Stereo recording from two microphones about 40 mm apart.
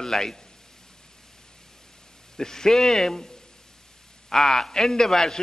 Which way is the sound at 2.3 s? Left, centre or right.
Centre.